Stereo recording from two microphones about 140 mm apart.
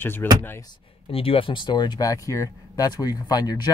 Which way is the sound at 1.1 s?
40° left (ahead or behind).